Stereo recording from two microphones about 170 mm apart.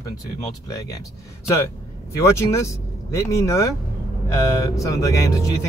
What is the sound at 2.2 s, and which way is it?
Speech, 15° left (ahead or behind).